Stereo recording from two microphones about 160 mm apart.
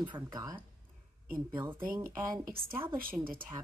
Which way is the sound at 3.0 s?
65° right (ahead or behind).